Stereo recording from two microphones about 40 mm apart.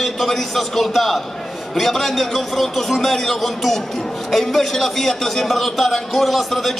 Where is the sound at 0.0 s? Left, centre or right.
Centre.